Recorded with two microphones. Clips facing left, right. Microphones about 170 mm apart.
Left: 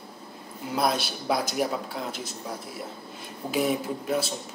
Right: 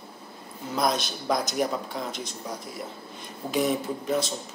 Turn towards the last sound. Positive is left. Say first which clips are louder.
# right 1 dB
turn(degrees=5)  # may be behind; listen again after turning